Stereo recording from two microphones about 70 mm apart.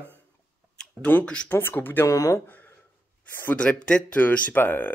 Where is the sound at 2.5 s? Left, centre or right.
Left.